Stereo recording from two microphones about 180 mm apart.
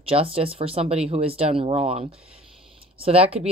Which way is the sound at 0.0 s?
30° right (ahead or behind).